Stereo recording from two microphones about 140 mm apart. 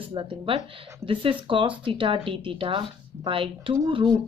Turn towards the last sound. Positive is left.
turn(degrees=-40)  # may be behind; listen again after turning